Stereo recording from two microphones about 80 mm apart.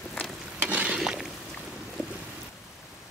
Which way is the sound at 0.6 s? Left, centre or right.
Centre.